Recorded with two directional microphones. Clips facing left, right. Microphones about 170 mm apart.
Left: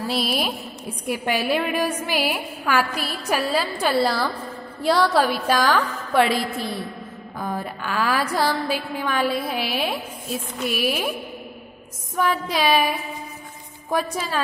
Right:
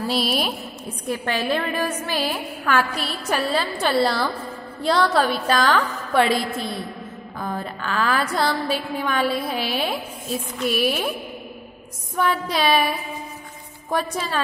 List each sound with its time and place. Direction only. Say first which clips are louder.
0.1 s a woman's voice: right 1 dB; centre (ahead or behind)
1.0 s a woman's voice: left 1 dB; 10° left (ahead or behind)
12.2 s a woman's voice: even; 5° left (ahead or behind)
13.8 s a woman's voice: even; 5° left (ahead or behind)